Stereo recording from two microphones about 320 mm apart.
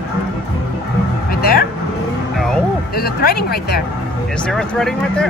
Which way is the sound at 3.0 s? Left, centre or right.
Left.